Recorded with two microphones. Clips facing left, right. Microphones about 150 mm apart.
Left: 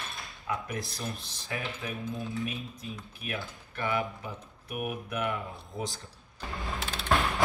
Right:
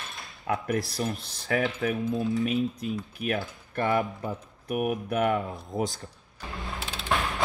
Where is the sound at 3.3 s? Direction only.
50° right (ahead or behind).